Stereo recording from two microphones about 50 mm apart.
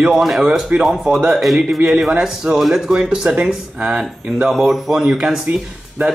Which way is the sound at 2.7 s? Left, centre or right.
Centre.